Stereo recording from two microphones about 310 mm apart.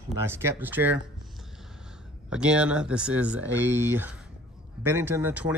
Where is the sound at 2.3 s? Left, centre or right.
Centre.